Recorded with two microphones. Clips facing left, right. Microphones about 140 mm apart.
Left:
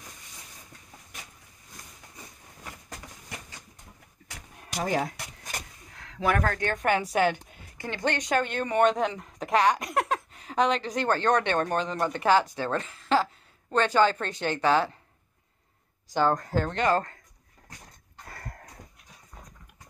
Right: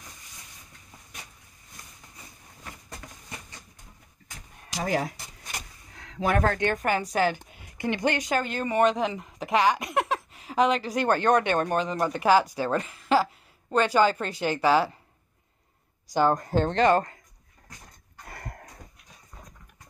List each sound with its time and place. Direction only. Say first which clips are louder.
4.3 s a sound: left 1 dB; 55° left (ahead or behind)
4.8 s speech: right 1 dB; 5° right (ahead or behind)
6.2 s speech: right 2 dB; 30° right (ahead or behind)
6.7 s speech: left 1 dB; 5° right (ahead or behind)
7.7 s speech: right 3 dB; 15° right (ahead or behind)
16.1 s speech: right 2 dB; 15° right (ahead or behind)
16.6 s speech: right 5 dB; 30° right (ahead or behind)
18.3 s a sound: right 2 dB; 15° right (ahead or behind)